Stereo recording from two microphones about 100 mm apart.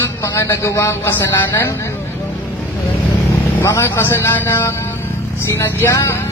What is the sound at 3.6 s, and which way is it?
A man's voice, 25° left (ahead or behind).